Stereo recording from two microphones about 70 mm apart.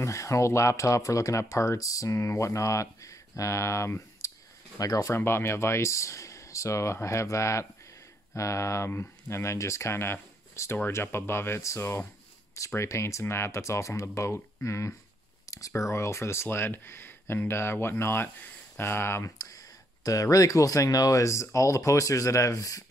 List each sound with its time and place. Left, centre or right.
0.0 s speech: left
4.7 s speech: left
5.1 s speech: left
19.3 s speech: left